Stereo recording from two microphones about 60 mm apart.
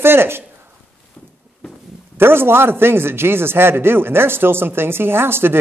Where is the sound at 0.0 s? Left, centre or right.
Right.